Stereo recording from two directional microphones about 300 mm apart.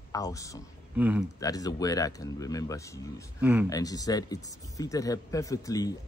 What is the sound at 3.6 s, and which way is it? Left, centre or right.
Speech, centre.